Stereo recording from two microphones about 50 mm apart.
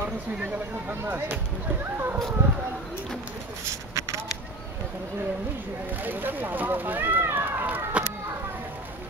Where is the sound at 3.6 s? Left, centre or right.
Right.